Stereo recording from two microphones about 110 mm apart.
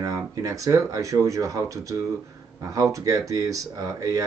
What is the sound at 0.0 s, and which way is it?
Speech, 30° right (ahead or behind).